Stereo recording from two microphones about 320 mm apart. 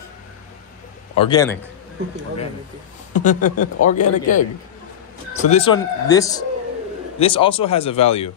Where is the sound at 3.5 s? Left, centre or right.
Left.